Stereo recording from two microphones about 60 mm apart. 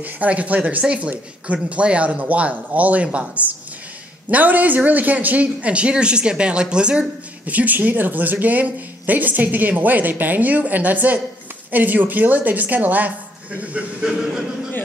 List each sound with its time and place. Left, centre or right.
0.0 s speech: right